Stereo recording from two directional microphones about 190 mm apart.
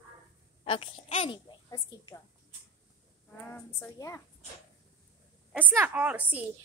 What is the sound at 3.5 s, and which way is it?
Speech, 15° left (ahead or behind).